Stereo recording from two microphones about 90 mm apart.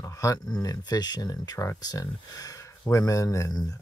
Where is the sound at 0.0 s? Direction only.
35° left (ahead or behind).